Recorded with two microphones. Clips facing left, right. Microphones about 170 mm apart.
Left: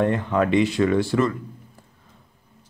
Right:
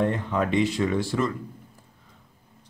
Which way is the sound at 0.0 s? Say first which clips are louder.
Left 4 dB; 70° left (ahead or behind).